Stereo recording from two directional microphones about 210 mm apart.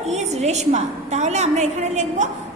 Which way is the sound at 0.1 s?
35° right (ahead or behind).